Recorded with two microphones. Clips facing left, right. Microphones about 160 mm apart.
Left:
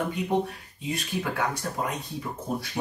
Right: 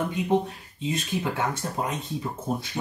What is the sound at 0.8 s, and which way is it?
Speech, 20° right (ahead or behind).